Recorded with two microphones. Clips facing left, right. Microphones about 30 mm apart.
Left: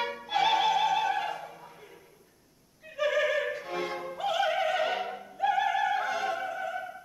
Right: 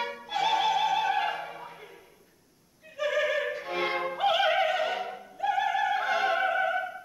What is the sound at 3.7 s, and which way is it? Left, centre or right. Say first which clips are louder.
Music: right 4 dB; right.